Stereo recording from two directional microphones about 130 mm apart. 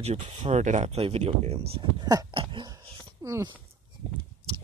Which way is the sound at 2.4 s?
40° right (ahead or behind).